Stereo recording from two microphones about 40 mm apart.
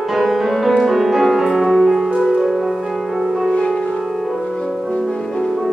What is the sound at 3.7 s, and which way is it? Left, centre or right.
Music, centre.